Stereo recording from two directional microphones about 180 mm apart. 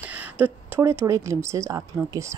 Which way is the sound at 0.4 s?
15° right (ahead or behind).